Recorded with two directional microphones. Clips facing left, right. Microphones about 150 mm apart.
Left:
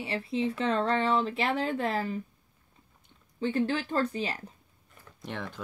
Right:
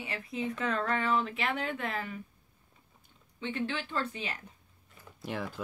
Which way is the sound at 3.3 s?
40° left (ahead or behind).